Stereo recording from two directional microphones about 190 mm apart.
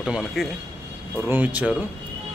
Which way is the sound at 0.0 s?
Centre (ahead or behind).